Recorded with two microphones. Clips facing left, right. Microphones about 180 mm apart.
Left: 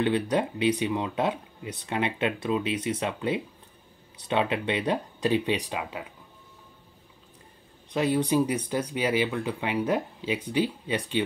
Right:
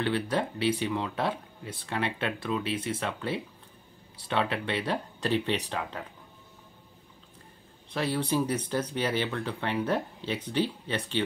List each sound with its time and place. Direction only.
0.0 s speech: 15° left (ahead or behind)
7.9 s speech: 15° left (ahead or behind)